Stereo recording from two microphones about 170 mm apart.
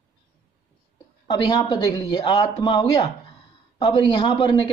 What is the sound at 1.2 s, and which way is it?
Speech, 30° left (ahead or behind).